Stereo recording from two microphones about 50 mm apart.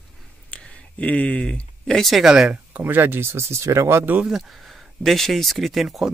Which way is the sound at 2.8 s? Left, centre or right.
Right.